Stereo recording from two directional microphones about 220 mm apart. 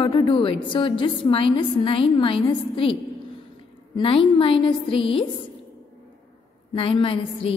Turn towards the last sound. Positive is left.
turn(degrees=25)  # may be behind; listen again after turning